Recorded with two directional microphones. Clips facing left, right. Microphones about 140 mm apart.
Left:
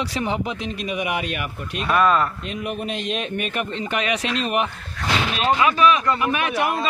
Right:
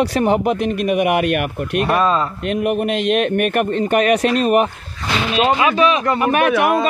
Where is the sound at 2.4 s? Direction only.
60° right (ahead or behind); by 4.7 s 45° right (ahead or behind).